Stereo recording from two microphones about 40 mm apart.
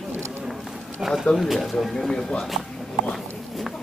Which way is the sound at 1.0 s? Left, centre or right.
Centre.